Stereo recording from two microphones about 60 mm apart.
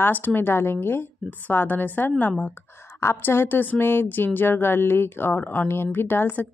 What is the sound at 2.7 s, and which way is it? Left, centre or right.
A woman's voice, left.